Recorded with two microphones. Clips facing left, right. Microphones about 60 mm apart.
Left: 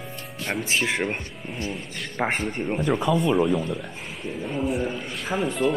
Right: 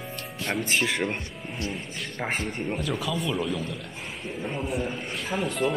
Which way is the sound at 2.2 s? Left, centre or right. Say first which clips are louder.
Left 5 dB; left.